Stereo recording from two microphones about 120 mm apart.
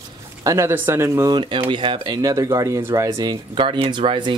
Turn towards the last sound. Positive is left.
turn(degrees=-45)  # may be behind; listen again after turning